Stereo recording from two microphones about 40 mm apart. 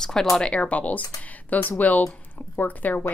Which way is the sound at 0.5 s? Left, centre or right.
Left.